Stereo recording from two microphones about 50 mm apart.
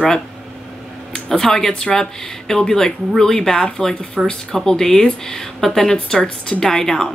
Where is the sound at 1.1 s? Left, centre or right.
Centre.